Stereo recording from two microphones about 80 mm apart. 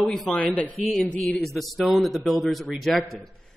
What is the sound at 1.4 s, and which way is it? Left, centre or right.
Speech, centre.